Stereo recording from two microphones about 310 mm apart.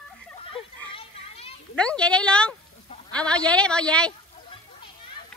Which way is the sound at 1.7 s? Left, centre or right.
Centre.